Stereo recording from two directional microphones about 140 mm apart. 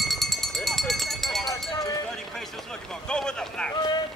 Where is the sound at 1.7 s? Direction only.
25° left (ahead or behind).